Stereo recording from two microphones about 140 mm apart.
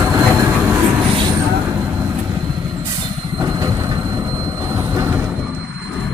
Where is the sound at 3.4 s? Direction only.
25° right (ahead or behind).